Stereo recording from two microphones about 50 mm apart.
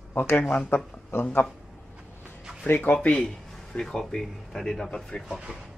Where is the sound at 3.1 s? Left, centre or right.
Centre.